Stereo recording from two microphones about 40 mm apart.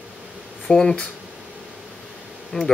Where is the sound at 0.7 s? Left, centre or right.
Centre.